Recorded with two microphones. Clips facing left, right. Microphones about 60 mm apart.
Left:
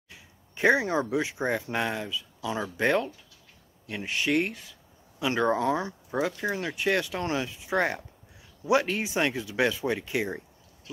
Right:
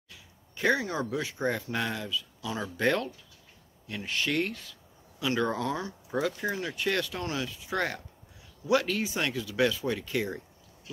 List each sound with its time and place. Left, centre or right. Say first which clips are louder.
0.1 s speech: left 2 dB; left